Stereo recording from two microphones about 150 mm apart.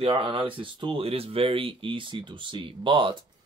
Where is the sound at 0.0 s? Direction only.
40° right (ahead or behind).